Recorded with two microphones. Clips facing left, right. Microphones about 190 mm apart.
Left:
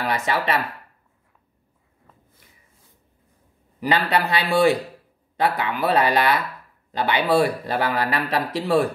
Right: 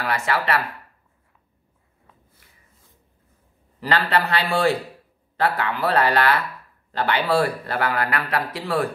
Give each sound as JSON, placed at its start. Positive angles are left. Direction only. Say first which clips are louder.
{"t": 0.0, "sound": "speech", "louder": "left 1 dB", "side_deg": 20}
{"t": 3.8, "sound": "speech", "louder": "left 1 dB", "side_deg": 15}